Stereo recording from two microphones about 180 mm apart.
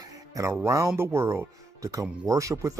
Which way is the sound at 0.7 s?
15° right (ahead or behind).